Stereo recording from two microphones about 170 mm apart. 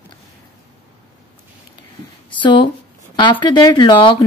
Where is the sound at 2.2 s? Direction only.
30° left (ahead or behind).